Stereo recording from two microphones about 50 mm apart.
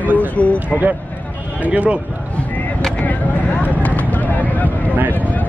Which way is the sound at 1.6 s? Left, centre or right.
Right.